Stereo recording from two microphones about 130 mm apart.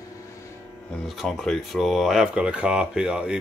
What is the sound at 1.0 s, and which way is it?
Speech, centre (ahead or behind).